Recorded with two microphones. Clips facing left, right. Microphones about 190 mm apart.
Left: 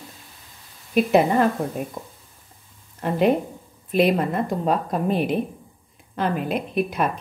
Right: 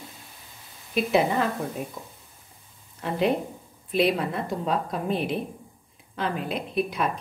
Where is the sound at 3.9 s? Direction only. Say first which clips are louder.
Left 4 dB; 50° left (ahead or behind).